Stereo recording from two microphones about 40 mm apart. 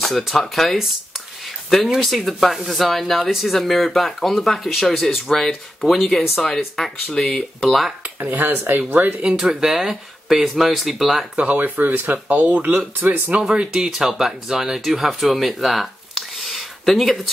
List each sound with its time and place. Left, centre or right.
0.0 s speech: centre
2.0 s speech: centre
7.6 s speech: centre
8.2 s speech: right
9.4 s speech: centre
11.5 s speech: right
13.3 s speech: right
13.7 s speech: centre